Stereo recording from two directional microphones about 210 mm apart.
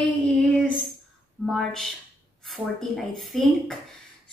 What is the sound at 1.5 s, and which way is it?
Speech, centre (ahead or behind).